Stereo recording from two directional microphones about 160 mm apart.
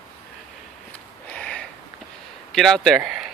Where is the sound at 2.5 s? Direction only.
Centre (ahead or behind).